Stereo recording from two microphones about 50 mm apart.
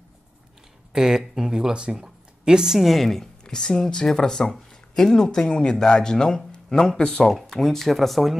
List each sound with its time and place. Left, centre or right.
0.9 s speech: centre
7.2 s speech: centre